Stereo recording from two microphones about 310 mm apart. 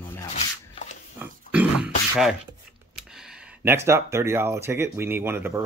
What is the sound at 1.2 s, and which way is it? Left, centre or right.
Dog, centre.